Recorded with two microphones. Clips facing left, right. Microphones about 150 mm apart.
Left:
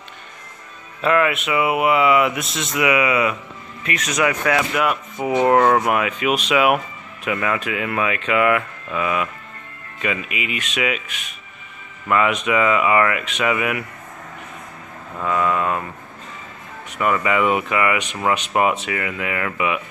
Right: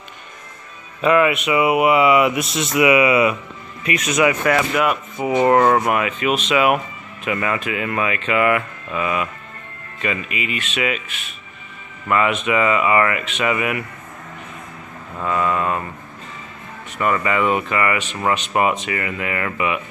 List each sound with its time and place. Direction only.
1.0 s speech: 10° right (ahead or behind)
12.1 s speech: centre (ahead or behind)
15.1 s speech: centre (ahead or behind)
17.0 s speech: 5° left (ahead or behind)